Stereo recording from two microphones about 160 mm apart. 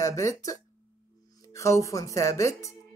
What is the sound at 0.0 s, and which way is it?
Speech, 20° left (ahead or behind).